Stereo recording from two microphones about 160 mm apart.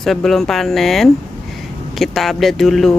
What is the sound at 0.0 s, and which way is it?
Speech, centre (ahead or behind).